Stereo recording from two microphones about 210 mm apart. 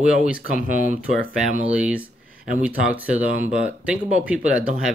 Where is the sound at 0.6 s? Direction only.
40° left (ahead or behind).